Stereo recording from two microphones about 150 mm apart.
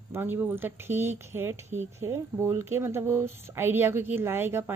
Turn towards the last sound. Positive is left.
turn(degrees=-15)  # may be behind; listen again after turning